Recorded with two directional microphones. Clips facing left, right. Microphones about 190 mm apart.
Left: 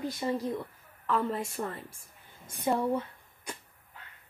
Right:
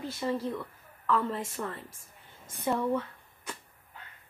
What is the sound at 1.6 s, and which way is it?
Speech, 35° left (ahead or behind).